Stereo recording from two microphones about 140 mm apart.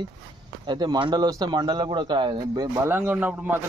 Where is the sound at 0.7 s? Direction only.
30° right (ahead or behind).